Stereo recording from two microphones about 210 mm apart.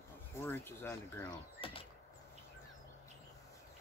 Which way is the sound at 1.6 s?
25° left (ahead or behind).